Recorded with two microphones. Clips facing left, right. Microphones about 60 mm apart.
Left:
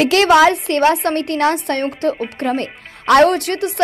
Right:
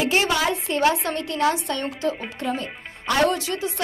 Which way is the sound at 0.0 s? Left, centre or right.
Left.